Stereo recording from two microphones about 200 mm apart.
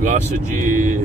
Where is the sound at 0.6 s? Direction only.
40° right (ahead or behind).